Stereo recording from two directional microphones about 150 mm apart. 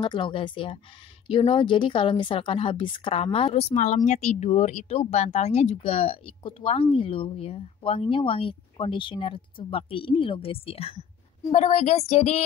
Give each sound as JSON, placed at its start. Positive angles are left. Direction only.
{"t": 0.0, "sound": "a woman's voice", "side_deg": 30}